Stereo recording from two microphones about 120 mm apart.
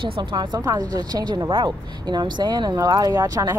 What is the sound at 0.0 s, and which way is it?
Speech, 45° right (ahead or behind).